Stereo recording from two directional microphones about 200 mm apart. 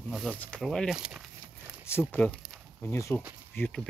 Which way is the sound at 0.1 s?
Centre (ahead or behind).